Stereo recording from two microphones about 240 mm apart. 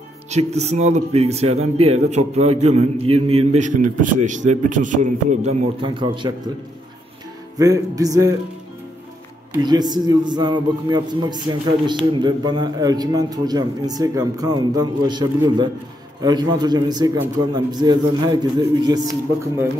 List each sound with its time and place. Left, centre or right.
0.3 s speech: right
7.5 s a man's voice: centre
9.6 s a man's voice: centre